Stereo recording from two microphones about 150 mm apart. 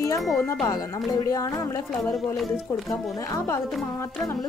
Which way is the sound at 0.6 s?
25° left (ahead or behind).